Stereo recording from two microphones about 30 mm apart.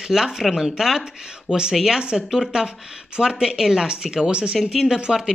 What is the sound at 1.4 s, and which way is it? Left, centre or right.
Speech, right.